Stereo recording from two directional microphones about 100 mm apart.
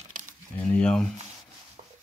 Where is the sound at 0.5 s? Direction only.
15° left (ahead or behind).